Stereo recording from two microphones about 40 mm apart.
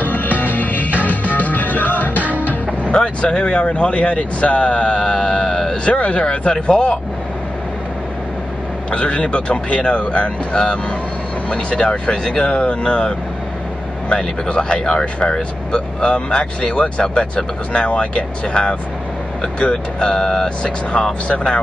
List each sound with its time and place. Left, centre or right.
0.0 s music: left
2.1 s music: right
2.9 s speech: left
6.2 s speech: left
8.9 s speech: left